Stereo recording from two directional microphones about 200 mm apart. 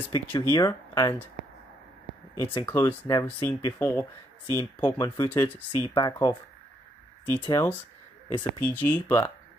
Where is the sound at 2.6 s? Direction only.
15° left (ahead or behind).